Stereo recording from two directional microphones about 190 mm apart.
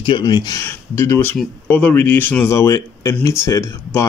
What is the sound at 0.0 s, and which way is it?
Speech, 25° left (ahead or behind).